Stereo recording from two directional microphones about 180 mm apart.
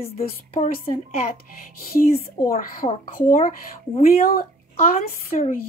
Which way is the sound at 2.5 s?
50° left (ahead or behind).